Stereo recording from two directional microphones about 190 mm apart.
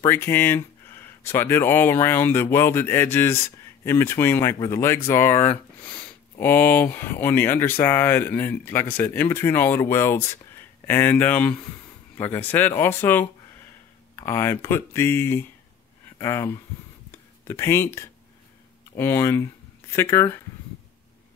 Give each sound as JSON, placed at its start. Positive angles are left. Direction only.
{"t": 0.0, "sound": "speech", "side_deg": 10}